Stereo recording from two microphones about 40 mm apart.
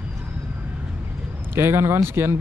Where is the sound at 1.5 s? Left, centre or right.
Right.